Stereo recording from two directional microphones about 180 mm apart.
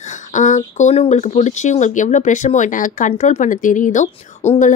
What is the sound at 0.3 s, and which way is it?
A woman's voice, 45° left (ahead or behind).